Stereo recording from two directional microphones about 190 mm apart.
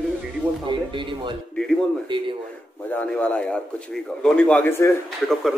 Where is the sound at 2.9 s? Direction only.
5° left (ahead or behind).